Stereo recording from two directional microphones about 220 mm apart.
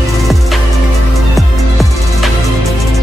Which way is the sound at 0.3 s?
Centre (ahead or behind).